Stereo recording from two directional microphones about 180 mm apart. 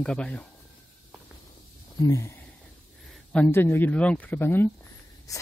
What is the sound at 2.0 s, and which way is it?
Speech, 20° left (ahead or behind).